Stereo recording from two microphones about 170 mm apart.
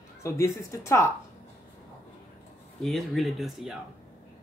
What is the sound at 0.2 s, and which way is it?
Speech, 15° left (ahead or behind).